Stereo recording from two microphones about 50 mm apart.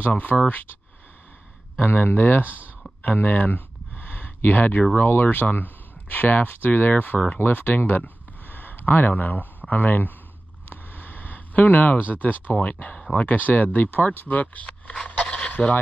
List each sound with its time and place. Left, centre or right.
0.1 s speech: left
1.8 s speech: left
3.0 s a sound: left
4.9 s speech: left
7.3 s speech: left
10.7 s a sound: left
12.6 s speech: left